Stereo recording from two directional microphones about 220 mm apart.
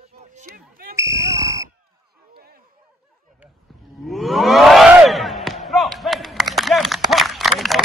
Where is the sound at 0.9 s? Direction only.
15° right (ahead or behind).